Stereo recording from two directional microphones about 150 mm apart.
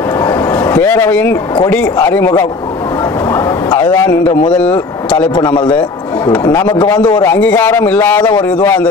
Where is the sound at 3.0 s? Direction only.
25° left (ahead or behind).